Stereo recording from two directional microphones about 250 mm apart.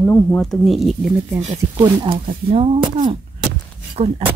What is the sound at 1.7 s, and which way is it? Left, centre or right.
Speech, centre.